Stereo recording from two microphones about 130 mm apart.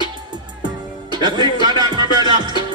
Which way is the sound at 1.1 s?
35° right (ahead or behind).